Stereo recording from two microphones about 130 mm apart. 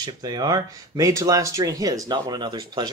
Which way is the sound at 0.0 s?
30° right (ahead or behind).